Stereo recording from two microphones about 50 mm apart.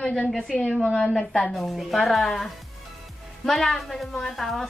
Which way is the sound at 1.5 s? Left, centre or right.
Centre.